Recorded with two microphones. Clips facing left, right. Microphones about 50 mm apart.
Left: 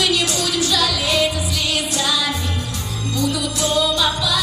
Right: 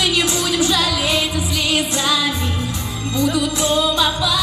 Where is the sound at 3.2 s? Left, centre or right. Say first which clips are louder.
Right 3 dB; right.